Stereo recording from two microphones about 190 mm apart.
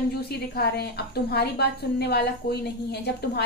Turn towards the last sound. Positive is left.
turn(degrees=60)  # may be behind; listen again after turning